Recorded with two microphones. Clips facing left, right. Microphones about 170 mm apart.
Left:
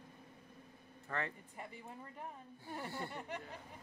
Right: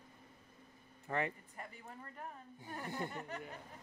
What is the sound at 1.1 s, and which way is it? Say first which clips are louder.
Speech: right 4 dB; 20° right (ahead or behind).